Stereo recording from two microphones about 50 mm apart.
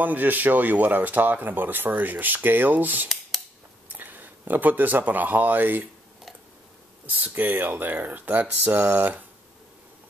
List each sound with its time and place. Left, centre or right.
0.0 s speech: right
7.1 s speech: right